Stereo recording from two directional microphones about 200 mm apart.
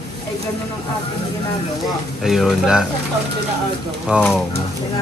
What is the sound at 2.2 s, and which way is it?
Speech, centre (ahead or behind).